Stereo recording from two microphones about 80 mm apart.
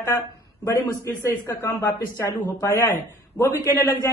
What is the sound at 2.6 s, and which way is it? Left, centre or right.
Speech, left.